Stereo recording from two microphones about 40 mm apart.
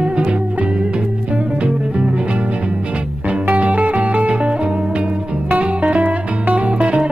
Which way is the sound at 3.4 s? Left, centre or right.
Right.